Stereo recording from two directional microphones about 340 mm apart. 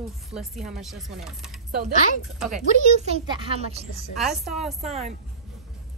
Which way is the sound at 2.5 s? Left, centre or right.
Right.